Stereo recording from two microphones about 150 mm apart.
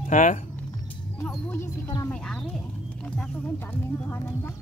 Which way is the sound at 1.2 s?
15° left (ahead or behind).